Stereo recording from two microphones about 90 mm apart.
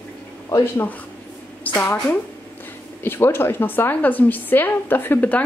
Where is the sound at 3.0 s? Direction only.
25° left (ahead or behind).